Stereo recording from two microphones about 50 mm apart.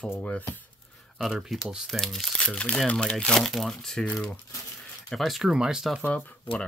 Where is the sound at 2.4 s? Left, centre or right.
Left.